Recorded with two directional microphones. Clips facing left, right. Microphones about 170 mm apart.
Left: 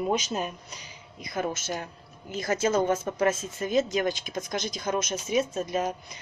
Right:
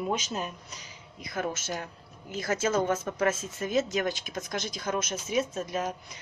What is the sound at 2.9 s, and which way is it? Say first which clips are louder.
Speech: left 2 dB; 10° left (ahead or behind).